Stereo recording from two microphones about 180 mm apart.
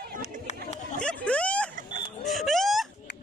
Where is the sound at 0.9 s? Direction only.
5° left (ahead or behind).